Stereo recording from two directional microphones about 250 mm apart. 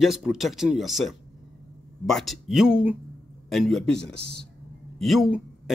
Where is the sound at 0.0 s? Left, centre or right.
Centre.